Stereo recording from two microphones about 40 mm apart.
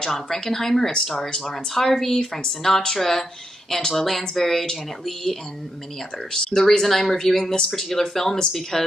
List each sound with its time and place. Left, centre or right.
0.0 s speech: centre